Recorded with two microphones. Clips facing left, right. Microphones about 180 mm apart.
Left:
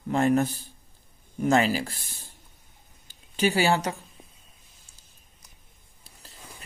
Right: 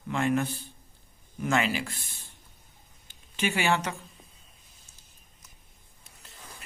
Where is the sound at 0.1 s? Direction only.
40° left (ahead or behind).